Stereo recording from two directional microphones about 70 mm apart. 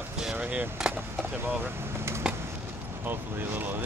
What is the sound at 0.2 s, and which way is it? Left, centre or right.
Skateboard, centre.